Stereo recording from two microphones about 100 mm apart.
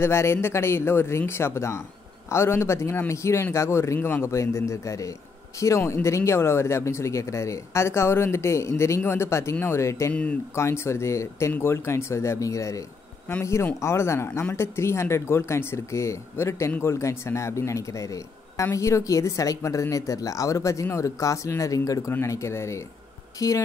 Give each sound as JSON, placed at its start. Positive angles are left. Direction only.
{"t": 0.0, "sound": "a man's voice", "side_deg": 25}